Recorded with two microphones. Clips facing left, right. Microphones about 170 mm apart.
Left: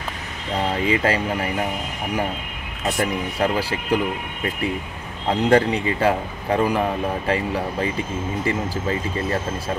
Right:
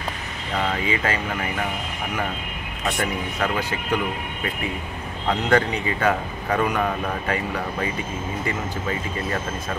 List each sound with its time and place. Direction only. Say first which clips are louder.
0.6 s speech: left 3 dB; 35° left (ahead or behind)
3.3 s speech: left 4 dB; 30° left (ahead or behind)
5.3 s speech: left 4 dB; 30° left (ahead or behind)